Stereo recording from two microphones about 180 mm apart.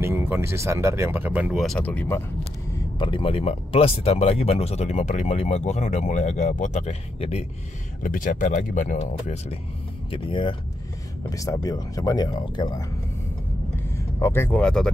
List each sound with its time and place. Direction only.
0.0 s speech: 15° right (ahead or behind); by 2.2 s 10° left (ahead or behind)
3.0 s speech: 30° left (ahead or behind)
8.0 s speech: 50° left (ahead or behind); by 10.5 s 30° left (ahead or behind)
11.2 s speech: 20° left (ahead or behind)
13.8 s speech: 15° left (ahead or behind)